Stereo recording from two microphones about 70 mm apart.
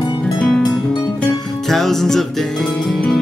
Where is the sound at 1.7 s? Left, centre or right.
Centre.